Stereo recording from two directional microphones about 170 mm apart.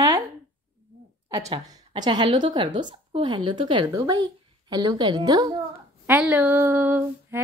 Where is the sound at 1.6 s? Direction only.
25° right (ahead or behind).